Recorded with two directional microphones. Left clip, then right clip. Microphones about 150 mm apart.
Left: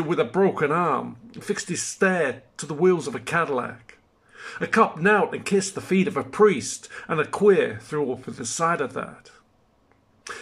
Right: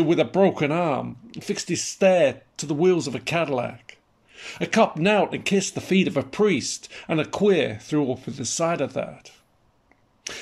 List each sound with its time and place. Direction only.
0.0 s speech: 15° right (ahead or behind)